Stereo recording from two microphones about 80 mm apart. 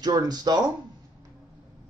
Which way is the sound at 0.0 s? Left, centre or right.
Right.